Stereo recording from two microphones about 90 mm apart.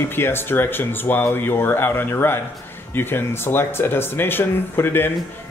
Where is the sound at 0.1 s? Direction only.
25° left (ahead or behind).